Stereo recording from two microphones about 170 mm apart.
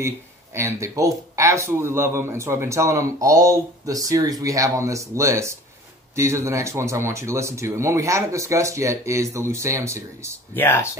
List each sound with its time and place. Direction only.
0.6 s speech: 15° right (ahead or behind)
10.5 s speech: 10° left (ahead or behind)